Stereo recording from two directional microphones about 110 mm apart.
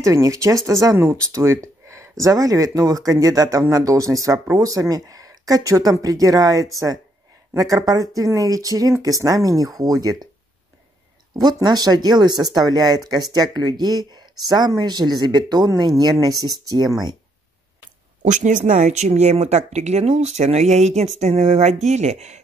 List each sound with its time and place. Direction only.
0.0 s speech: 30° right (ahead or behind)
11.3 s speech: 35° right (ahead or behind)
18.2 s speech: 90° right